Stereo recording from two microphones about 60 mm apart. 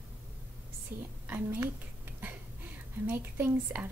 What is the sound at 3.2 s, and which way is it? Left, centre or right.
Speech, right.